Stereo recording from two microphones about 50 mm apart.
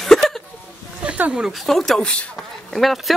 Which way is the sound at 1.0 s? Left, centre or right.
Right.